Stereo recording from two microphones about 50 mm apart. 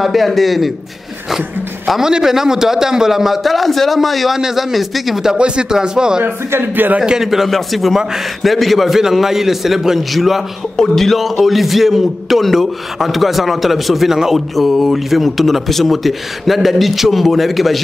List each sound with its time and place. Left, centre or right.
0.0 s a man's voice: centre
2.0 s a man's voice: centre
6.5 s speech: right
7.0 s a man's voice: centre